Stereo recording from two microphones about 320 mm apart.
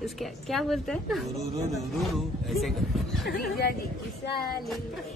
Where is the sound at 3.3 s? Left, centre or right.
Left.